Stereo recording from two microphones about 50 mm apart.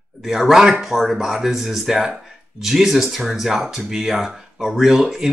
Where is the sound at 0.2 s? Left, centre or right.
Centre.